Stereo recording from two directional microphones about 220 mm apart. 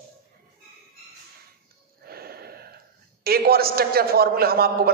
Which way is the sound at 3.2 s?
45° right (ahead or behind).